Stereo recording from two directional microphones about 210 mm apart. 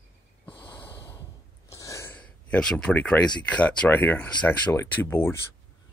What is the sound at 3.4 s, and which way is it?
Speech, 5° left (ahead or behind).